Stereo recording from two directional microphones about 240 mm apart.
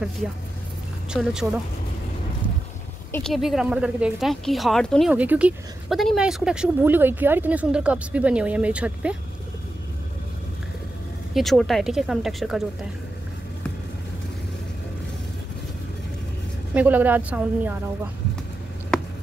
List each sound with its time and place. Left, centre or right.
1.1 s speech: centre
3.1 s speech: centre
11.3 s speech: centre
16.7 s a woman's voice: centre